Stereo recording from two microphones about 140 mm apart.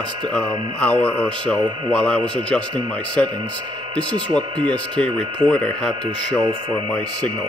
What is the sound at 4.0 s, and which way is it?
Speech, 10° left (ahead or behind).